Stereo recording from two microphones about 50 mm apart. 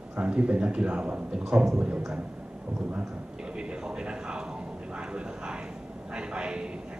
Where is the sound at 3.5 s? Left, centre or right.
Centre.